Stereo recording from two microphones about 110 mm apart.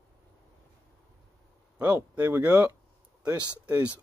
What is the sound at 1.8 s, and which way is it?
Speech, 15° right (ahead or behind).